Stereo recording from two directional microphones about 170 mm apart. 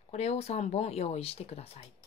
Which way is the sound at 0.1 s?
40° left (ahead or behind).